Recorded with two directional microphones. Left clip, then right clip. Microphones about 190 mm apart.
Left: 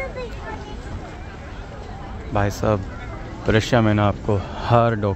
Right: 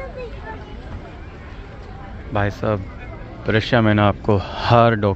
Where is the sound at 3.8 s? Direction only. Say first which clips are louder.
Right 3 dB; centre (ahead or behind).